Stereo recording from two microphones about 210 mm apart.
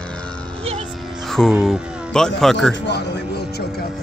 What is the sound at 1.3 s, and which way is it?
Speech, centre (ahead or behind).